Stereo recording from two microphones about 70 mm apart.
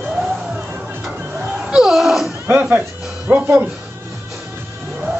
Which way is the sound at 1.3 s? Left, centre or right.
Centre.